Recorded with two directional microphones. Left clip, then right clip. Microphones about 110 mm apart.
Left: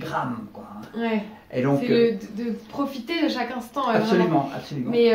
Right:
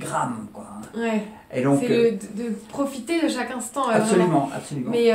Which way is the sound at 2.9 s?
45° right (ahead or behind).